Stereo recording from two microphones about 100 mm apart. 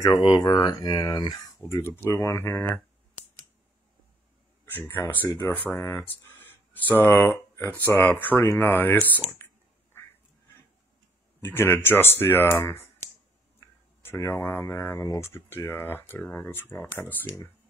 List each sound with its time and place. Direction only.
0.3 s speech: 40° left (ahead or behind)
1.7 s speech: 25° left (ahead or behind)
4.6 s speech: 20° left (ahead or behind)
9.4 s a sound: 25° left (ahead or behind)
11.4 s speech: 20° left (ahead or behind)
14.0 s speech: 25° left (ahead or behind)